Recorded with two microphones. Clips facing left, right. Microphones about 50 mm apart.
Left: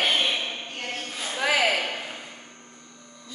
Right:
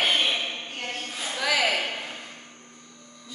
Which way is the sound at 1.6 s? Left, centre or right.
Centre.